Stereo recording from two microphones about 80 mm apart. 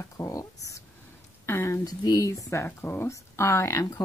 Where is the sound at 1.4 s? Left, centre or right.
Left.